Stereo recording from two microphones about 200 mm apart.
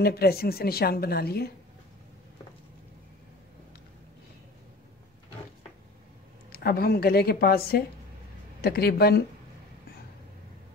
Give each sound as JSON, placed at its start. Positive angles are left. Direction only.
{"t": 0.0, "sound": "a woman's voice", "side_deg": 50}
{"t": 6.5, "sound": "a woman's voice", "side_deg": 50}